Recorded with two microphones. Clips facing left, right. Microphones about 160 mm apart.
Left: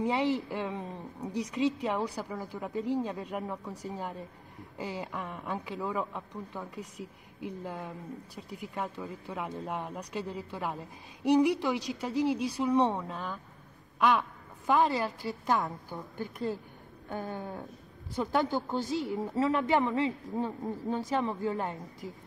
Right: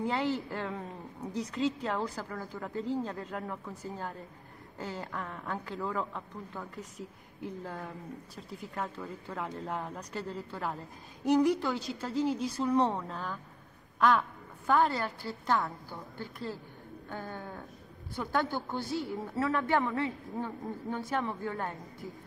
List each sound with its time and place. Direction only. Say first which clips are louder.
0.0 s a woman's voice: left 3 dB; 15° left (ahead or behind)
9.3 s a woman's voice: left 1 dB; 15° left (ahead or behind)